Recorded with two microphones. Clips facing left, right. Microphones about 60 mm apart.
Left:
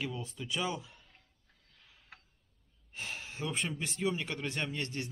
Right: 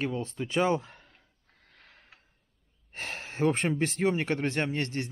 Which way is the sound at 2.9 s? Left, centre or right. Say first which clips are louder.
Right 4 dB; right.